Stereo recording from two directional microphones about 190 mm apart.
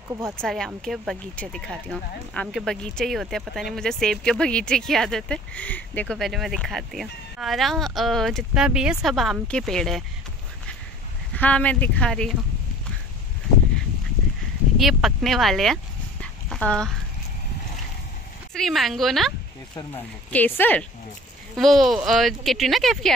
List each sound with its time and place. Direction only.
0.2 s speech: 5° left (ahead or behind)
11.3 s speech: 10° left (ahead or behind)
14.8 s speech: centre (ahead or behind)
18.5 s speech: centre (ahead or behind)
19.7 s speech: 20° left (ahead or behind)
20.2 s speech: 10° left (ahead or behind)